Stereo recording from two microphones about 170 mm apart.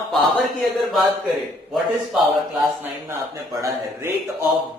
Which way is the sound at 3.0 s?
20° right (ahead or behind).